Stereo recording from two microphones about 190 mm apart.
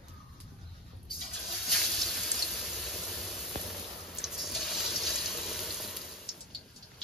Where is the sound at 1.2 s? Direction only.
Centre (ahead or behind).